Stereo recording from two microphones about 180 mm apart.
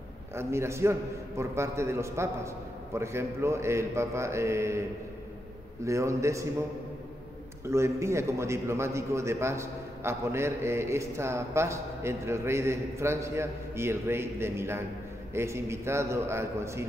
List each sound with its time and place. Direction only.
0.3 s a man's voice: 15° right (ahead or behind)
5.9 s a man's voice: 15° right (ahead or behind)
7.6 s a man's voice: 15° right (ahead or behind)